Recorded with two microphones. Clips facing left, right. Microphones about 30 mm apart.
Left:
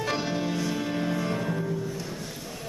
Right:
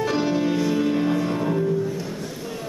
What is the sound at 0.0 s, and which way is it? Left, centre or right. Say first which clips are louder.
Music: right 6 dB; centre.